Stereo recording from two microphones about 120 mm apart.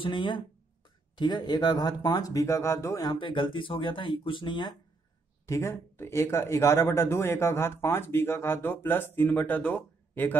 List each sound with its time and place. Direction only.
0.0 s speech: 40° left (ahead or behind)
5.5 s speech: 20° left (ahead or behind)